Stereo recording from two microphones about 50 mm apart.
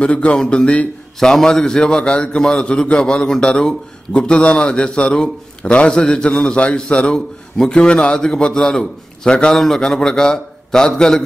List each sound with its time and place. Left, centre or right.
0.0 s a man's voice: left
1.2 s a man's voice: centre